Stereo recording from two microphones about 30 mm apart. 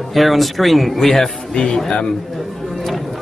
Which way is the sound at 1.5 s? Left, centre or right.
Left.